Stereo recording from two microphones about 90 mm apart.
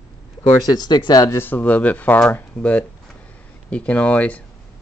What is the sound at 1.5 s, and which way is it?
Speech, 20° left (ahead or behind).